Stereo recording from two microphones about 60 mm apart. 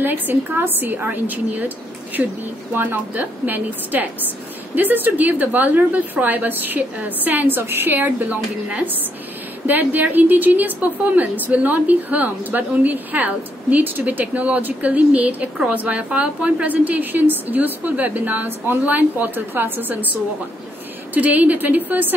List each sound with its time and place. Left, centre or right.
0.0 s a woman's voice: right
2.7 s a woman's voice: right
9.7 s a woman's voice: right